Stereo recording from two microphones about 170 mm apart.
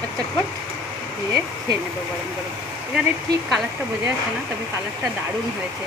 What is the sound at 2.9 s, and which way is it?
Speech, 5° right (ahead or behind).